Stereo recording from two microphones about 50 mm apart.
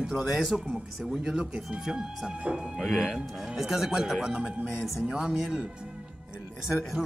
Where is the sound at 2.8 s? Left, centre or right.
Centre.